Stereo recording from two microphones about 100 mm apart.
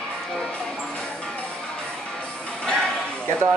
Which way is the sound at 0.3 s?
10° left (ahead or behind).